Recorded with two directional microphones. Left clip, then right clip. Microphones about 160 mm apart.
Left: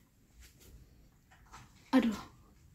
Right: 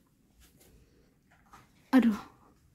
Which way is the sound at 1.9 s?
45° right (ahead or behind).